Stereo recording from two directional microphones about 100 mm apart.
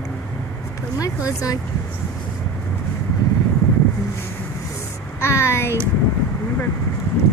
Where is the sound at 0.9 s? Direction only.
35° left (ahead or behind).